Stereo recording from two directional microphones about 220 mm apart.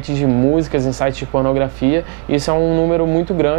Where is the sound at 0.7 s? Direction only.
20° right (ahead or behind).